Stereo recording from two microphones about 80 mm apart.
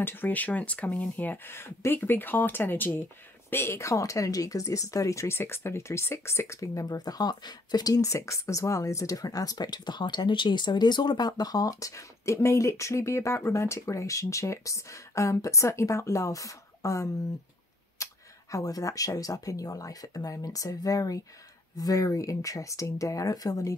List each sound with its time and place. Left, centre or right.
0.0 s speech: left